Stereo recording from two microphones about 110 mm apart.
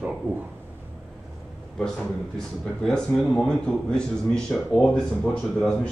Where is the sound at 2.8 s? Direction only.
5° left (ahead or behind).